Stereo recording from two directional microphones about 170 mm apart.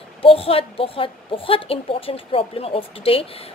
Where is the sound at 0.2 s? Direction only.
35° left (ahead or behind).